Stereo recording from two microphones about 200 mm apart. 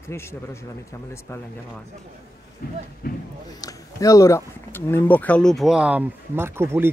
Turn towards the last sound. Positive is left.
turn(degrees=-10)  # may be behind; listen again after turning